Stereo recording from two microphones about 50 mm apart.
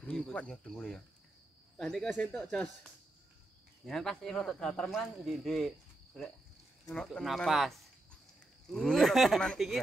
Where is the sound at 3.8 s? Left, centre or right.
Centre.